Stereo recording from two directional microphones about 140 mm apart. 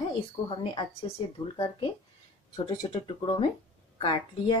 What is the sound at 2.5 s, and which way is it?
A woman's voice, 35° left (ahead or behind).